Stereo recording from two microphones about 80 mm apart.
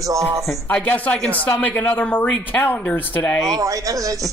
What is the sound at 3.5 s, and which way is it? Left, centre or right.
Speech, right.